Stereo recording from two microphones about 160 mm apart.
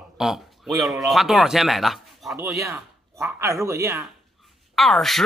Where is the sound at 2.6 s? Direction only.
15° right (ahead or behind).